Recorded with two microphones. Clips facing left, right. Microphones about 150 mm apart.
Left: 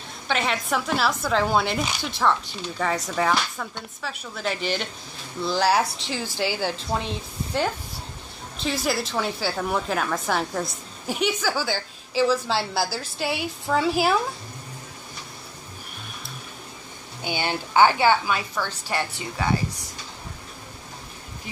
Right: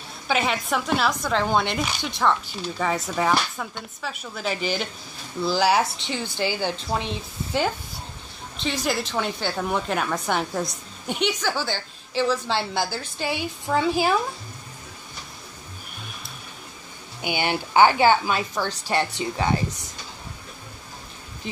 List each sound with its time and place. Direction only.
0.3 s a woman's voice: 5° right (ahead or behind)
17.2 s a woman's voice: 15° right (ahead or behind)